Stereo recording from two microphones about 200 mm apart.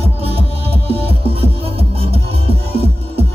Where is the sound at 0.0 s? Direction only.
30° right (ahead or behind).